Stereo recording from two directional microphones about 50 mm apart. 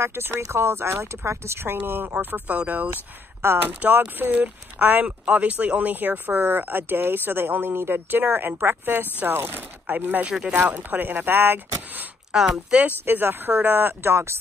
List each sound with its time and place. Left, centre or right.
0.0 s speech: right
0.4 s speech: right
1.7 s speech: right
12.3 s speech: centre
13.0 s speech: right
14.1 s speech: right